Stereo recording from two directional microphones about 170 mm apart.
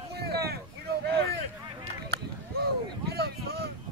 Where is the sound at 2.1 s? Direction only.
70° right (ahead or behind).